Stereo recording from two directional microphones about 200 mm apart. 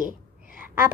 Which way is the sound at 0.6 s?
10° right (ahead or behind).